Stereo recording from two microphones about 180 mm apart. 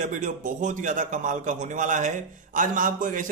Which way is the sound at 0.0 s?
45° right (ahead or behind).